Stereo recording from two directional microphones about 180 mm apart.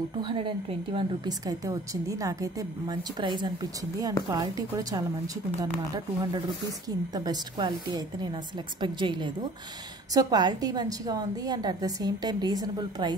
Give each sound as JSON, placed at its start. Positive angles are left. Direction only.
{"t": 0.2, "sound": "a woman's voice", "side_deg": -30}